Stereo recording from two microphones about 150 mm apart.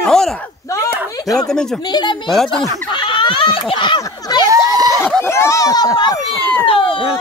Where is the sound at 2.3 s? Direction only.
Centre (ahead or behind).